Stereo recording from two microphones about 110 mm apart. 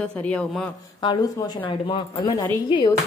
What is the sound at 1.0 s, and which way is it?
Speech, 40° left (ahead or behind).